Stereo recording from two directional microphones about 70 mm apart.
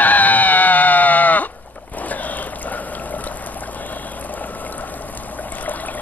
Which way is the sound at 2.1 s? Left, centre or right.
Left.